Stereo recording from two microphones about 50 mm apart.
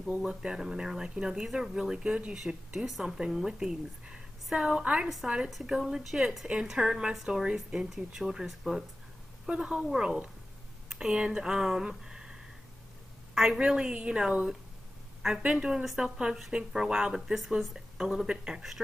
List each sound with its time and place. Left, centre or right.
0.3 s a woman's voice: centre
2.3 s a woman's voice: centre
5.0 s a woman's voice: centre